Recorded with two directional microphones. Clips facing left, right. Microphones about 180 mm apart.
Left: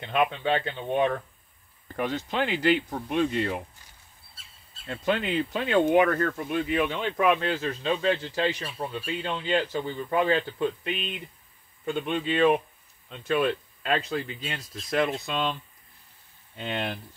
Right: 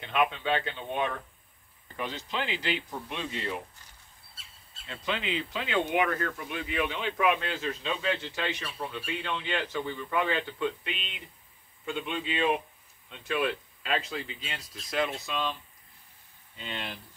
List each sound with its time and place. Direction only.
0.0 s speech: 35° left (ahead or behind)
2.0 s speech: 50° left (ahead or behind)
4.8 s speech: 50° left (ahead or behind)
16.5 s speech: 55° left (ahead or behind)